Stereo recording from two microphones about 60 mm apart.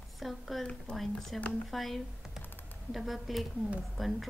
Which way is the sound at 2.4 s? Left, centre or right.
Left.